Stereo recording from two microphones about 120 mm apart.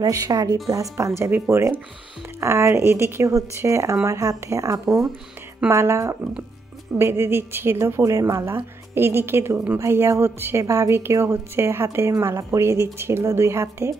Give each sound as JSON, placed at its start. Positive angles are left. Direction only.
{"t": 0.0, "sound": "a woman's voice", "side_deg": -30}